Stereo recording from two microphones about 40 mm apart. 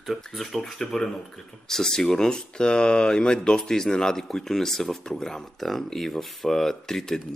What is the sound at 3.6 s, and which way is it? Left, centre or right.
Speech, centre.